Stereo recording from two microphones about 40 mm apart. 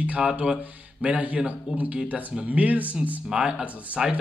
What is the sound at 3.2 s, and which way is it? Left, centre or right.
Speech, right.